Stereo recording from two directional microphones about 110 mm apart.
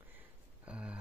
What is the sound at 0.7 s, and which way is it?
Speech, 10° right (ahead or behind).